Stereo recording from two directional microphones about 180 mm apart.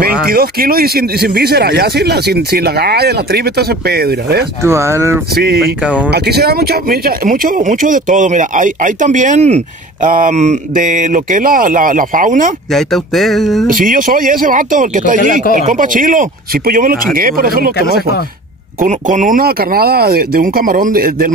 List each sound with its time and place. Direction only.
0.0 s speech: 55° right (ahead or behind)
4.6 s speech: 15° right (ahead or behind)
5.3 s speech: 60° right (ahead or behind)
12.7 s speech: centre (ahead or behind)
13.7 s speech: 50° right (ahead or behind)
18.8 s speech: 45° right (ahead or behind)